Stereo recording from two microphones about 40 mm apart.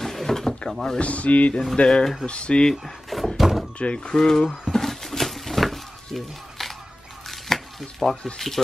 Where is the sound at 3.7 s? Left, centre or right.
Left.